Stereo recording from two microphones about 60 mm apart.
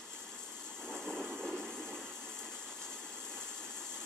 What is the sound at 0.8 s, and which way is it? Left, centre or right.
Vehicle, centre.